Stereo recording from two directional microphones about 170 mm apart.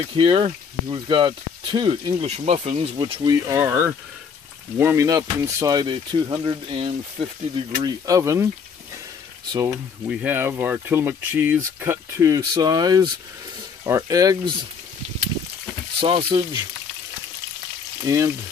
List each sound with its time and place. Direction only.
0.0 s speech: 30° right (ahead or behind)
3.0 s speech: 20° right (ahead or behind)
7.8 s speech: 20° right (ahead or behind)
9.5 s speech: 20° right (ahead or behind)
10.0 s speech: 10° right (ahead or behind)
16.0 s speech: 30° right (ahead or behind)
18.0 s speech: 20° right (ahead or behind)